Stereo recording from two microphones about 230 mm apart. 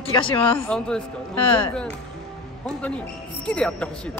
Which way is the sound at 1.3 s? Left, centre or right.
Left.